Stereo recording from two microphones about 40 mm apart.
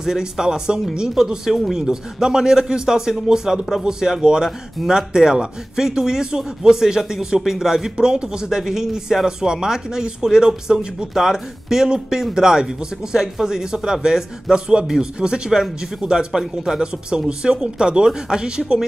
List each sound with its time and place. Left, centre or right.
0.0 s speech: centre